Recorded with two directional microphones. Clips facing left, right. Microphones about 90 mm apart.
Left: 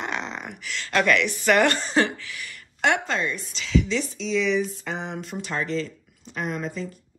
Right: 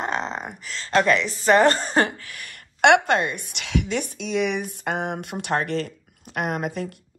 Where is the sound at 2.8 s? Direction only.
65° right (ahead or behind).